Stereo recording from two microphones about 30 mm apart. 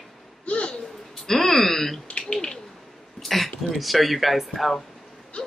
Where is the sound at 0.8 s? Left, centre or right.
Centre.